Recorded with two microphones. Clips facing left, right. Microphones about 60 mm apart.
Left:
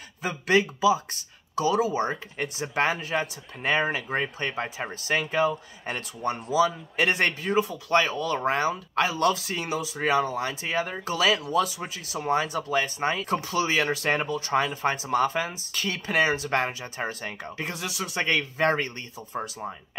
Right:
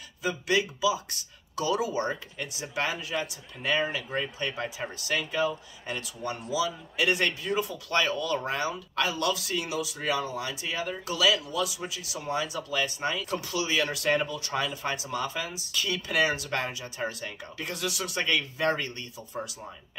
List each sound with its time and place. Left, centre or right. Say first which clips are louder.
0.2 s speech: left 4 dB; left
2.3 s speech: left 5 dB; left